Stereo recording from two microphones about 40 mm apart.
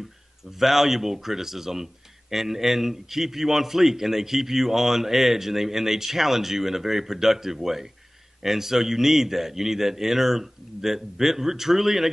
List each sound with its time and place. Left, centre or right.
0.6 s speech: centre